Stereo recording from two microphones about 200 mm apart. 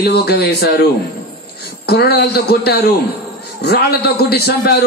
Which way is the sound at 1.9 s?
55° left (ahead or behind).